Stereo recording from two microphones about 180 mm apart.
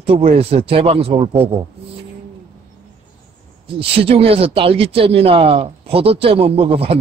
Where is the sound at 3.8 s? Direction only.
30° right (ahead or behind).